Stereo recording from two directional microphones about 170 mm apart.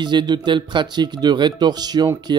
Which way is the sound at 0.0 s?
25° right (ahead or behind).